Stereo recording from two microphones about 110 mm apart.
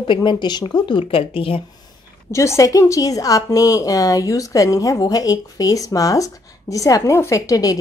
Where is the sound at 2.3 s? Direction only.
25° left (ahead or behind).